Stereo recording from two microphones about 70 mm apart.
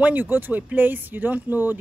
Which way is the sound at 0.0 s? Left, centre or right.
Right.